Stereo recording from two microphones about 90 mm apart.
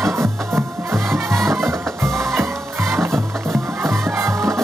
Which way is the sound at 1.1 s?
5° left (ahead or behind).